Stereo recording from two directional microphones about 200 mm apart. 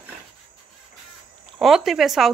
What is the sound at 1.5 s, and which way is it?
Speech, centre (ahead or behind).